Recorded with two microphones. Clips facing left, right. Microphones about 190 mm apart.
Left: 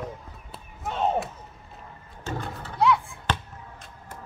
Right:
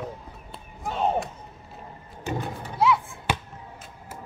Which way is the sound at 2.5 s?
15° right (ahead or behind).